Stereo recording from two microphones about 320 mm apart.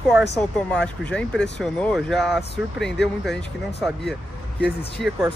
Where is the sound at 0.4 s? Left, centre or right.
Centre.